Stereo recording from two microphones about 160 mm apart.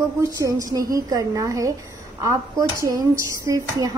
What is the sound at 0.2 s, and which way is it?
Speech, 20° right (ahead or behind).